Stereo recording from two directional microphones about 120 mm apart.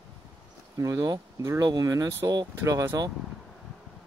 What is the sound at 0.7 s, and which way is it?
Speech, 30° right (ahead or behind).